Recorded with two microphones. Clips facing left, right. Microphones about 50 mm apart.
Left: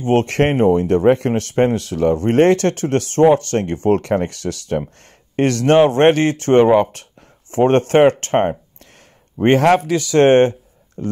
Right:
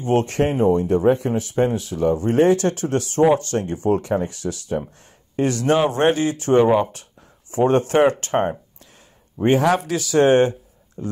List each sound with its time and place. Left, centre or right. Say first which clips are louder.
0.0 s speech: left 3 dB; left
9.4 s speech: left 4 dB; left